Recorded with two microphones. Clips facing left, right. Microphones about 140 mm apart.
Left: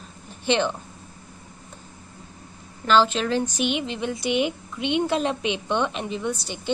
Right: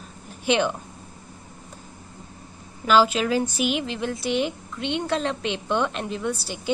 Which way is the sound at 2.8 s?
10° right (ahead or behind).